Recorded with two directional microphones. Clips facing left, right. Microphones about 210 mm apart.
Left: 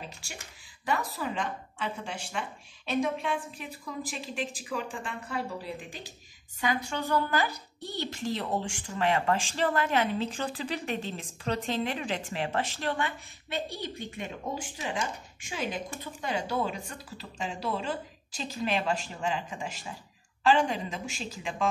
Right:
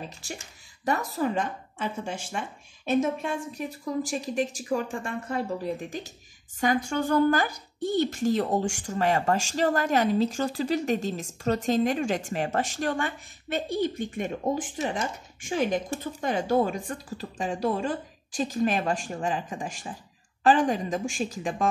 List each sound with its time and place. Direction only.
0.8 s speech: 45° right (ahead or behind)